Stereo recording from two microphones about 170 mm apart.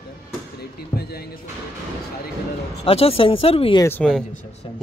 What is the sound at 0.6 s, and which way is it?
Music, 70° left (ahead or behind).